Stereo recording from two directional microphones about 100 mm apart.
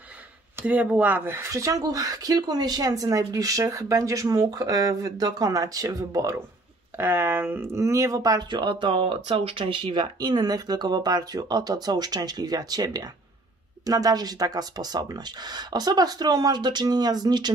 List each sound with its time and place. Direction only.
0.6 s speech: 15° right (ahead or behind); by 17.5 s 45° right (ahead or behind)